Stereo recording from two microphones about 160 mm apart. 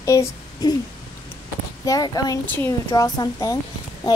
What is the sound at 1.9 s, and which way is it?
A woman's voice, 25° left (ahead or behind).